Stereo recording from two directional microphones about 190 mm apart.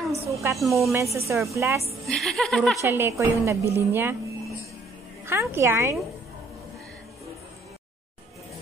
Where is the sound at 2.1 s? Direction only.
Centre (ahead or behind).